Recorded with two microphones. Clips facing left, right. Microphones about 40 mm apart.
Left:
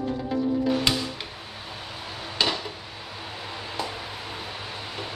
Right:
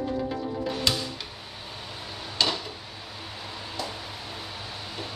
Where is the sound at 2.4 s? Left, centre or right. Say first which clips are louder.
Left 1 dB; centre.